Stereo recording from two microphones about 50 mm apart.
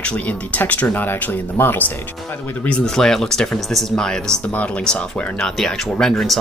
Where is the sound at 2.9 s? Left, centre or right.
Centre.